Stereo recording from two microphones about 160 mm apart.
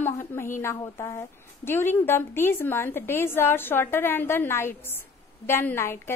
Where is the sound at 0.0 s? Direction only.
15° left (ahead or behind).